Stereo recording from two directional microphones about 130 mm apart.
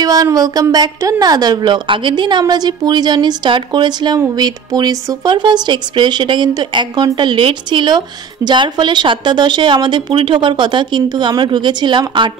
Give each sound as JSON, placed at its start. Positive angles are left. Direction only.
{"t": 0.0, "sound": "speech", "side_deg": -30}